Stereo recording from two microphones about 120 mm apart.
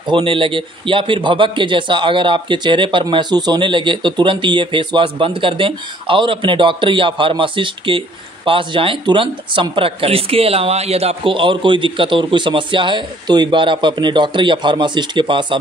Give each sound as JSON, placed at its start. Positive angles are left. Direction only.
{"t": 0.0, "sound": "a man's voice", "side_deg": -45}